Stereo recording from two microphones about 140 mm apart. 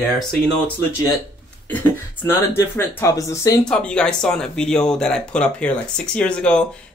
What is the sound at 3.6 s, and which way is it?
Speech, 5° left (ahead or behind).